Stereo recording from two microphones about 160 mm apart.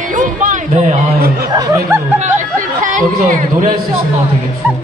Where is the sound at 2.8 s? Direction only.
55° right (ahead or behind).